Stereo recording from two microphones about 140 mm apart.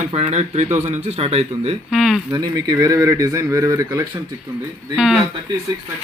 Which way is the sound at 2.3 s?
30° right (ahead or behind).